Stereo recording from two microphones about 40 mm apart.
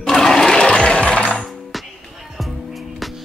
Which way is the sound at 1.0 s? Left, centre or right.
Left.